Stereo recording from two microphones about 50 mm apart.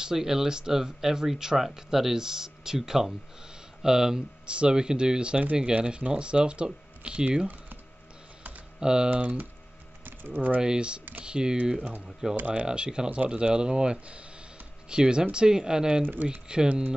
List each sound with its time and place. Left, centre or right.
0.0 s speech: centre; by 7.8 s right
8.7 s speech: centre
9.2 s speech: right
10.0 s ratchet: right
10.6 s speech: centre
12.4 s speech: right
12.6 s speech: centre
16.0 s speech: right
16.3 s speech: centre